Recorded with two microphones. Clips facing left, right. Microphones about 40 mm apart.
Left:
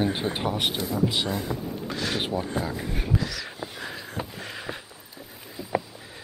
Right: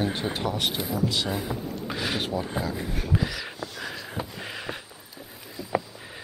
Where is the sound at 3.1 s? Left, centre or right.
Centre.